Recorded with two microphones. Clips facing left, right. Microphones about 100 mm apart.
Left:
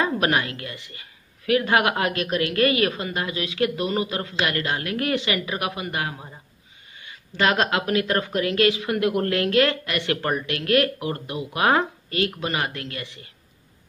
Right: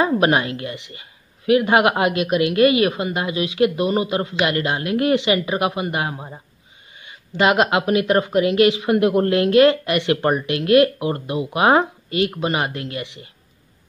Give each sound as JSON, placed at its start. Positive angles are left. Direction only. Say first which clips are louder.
{"t": 0.0, "sound": "a woman's voice", "louder": "right 5 dB", "side_deg": -25}